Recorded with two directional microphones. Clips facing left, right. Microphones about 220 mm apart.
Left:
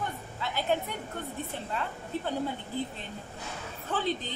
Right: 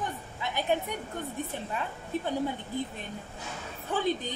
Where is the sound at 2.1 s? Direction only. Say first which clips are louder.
Right 2 dB; 15° right (ahead or behind).